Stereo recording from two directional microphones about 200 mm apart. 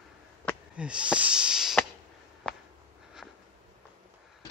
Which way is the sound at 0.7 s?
5° right (ahead or behind).